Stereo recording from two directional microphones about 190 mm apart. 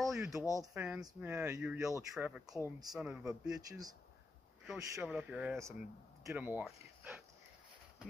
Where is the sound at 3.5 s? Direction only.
20° right (ahead or behind).